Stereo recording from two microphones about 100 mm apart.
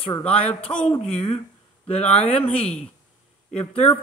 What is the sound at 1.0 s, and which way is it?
Speech, 80° left.